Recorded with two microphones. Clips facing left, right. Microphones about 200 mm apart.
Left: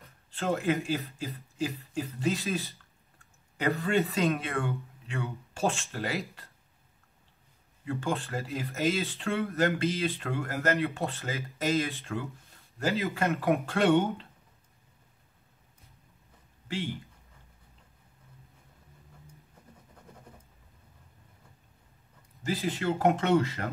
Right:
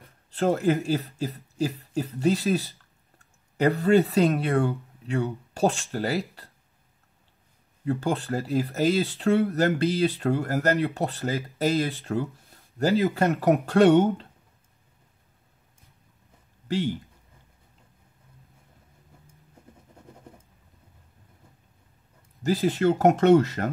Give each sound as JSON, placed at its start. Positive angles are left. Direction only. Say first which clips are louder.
{"t": 0.3, "sound": "speech", "louder": "right 6 dB", "side_deg": -40}
{"t": 7.8, "sound": "speech", "louder": "right 5 dB", "side_deg": -40}
{"t": 22.4, "sound": "speech", "louder": "right 8 dB", "side_deg": -45}